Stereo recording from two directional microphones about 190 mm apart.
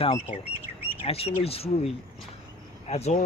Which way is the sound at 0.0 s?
30° left (ahead or behind).